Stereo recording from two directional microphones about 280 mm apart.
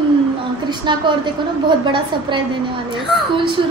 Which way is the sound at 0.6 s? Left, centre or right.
Centre.